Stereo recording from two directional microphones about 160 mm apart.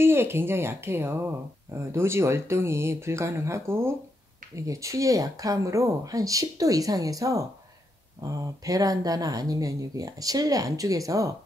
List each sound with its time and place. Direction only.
0.0 s speech: 15° right (ahead or behind)